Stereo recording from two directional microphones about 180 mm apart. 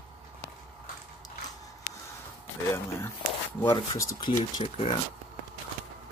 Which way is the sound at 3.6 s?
15° left (ahead or behind).